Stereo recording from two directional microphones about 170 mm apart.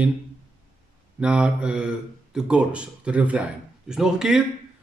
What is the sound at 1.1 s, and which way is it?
Speech, 10° right (ahead or behind).